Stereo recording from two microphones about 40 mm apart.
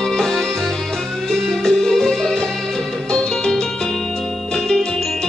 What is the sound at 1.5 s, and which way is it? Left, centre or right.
Music, centre.